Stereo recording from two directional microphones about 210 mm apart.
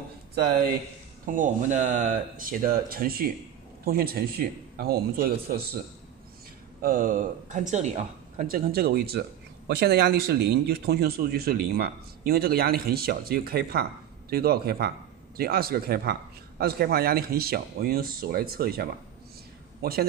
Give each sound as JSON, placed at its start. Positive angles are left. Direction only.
{"t": 1.2, "sound": "speech", "side_deg": -40}
{"t": 6.8, "sound": "speech", "side_deg": -40}